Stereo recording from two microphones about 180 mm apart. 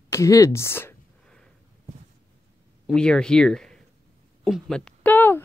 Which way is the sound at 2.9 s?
5° left (ahead or behind).